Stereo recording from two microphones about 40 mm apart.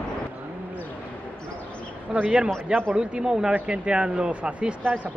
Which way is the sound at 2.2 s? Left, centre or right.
Right.